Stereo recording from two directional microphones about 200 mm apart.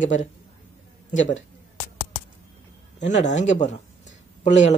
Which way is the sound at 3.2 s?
35° left (ahead or behind).